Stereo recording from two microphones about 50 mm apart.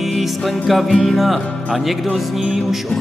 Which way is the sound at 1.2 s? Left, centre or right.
Centre.